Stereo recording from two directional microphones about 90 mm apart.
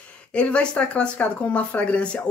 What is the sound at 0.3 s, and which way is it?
Speech, 10° left (ahead or behind).